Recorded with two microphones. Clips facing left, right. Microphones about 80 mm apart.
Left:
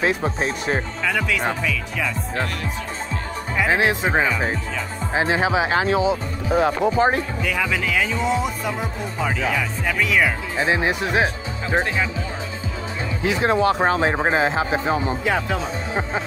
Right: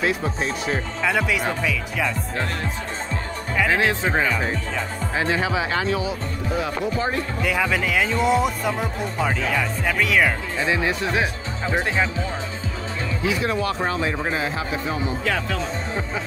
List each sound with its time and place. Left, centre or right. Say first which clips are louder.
0.0 s speech: left 2 dB; left
1.0 s speech: right 1 dB; centre
3.5 s speech: left 1 dB; centre
6.6 s speech: left 8 dB; left
7.4 s speech: right 1 dB; centre
10.6 s speech: left 2 dB; left
13.2 s speech: left 5 dB; left
15.2 s speech: left 2 dB; centre